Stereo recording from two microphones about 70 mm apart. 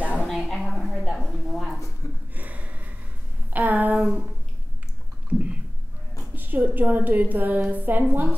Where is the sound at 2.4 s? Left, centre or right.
Right.